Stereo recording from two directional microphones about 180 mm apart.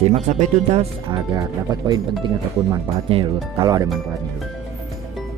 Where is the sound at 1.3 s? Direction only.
20° right (ahead or behind).